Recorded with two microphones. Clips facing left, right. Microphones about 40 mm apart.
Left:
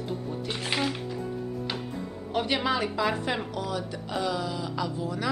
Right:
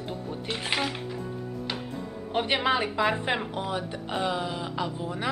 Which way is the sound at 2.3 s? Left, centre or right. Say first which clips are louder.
Right 2 dB; right.